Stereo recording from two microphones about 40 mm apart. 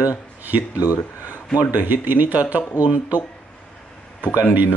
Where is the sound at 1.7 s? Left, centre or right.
Right.